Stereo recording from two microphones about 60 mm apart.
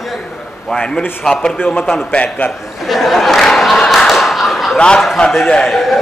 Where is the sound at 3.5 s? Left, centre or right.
Centre.